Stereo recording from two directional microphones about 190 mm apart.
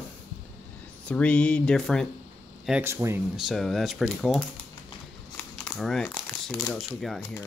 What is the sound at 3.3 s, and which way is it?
Speech, centre (ahead or behind).